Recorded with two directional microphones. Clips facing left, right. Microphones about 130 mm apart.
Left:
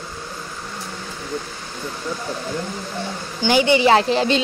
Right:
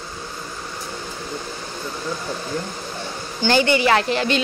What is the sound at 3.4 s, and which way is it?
Speech, 15° left (ahead or behind).